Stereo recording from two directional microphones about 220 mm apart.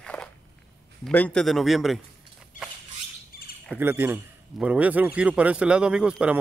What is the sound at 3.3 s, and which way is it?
Squawk, 45° left (ahead or behind).